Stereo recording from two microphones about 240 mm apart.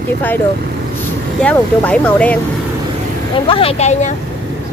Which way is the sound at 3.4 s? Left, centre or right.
Left.